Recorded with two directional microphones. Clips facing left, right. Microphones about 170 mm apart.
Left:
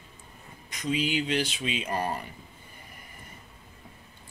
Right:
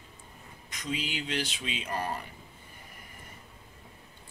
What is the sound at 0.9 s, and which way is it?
Speech, 15° left (ahead or behind).